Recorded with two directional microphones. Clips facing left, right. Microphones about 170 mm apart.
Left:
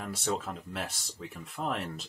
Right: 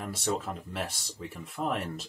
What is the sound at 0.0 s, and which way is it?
Speech, centre (ahead or behind).